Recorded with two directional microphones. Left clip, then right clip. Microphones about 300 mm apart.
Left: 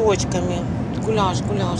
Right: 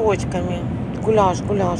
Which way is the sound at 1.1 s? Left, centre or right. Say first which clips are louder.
Right 5 dB; centre.